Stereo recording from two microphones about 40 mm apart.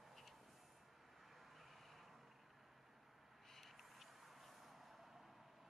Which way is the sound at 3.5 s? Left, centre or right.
Centre.